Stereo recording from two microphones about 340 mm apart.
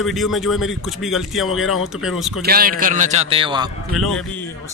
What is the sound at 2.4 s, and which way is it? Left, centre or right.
A man's voice, right.